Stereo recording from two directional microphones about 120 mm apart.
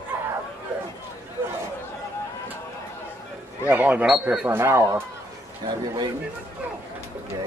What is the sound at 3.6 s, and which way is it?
Speech, 15° right (ahead or behind).